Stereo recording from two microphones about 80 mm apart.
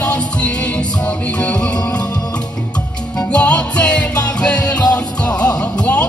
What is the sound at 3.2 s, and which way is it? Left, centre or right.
Music, centre.